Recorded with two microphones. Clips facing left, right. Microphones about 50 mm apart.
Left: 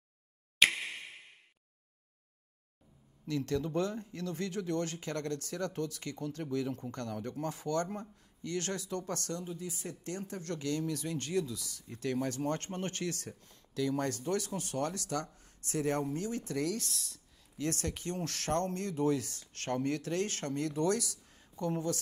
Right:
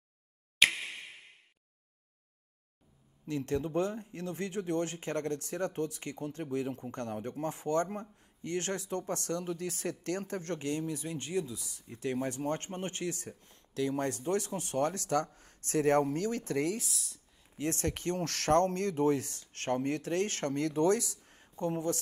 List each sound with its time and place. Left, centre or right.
0.6 s a sound: centre
3.3 s speech: right
9.3 s speech: right
16.7 s speech: centre
17.7 s speech: right
21.2 s a sound: right